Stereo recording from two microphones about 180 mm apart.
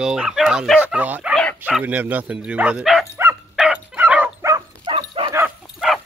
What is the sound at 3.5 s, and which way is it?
Dog, 5° right (ahead or behind).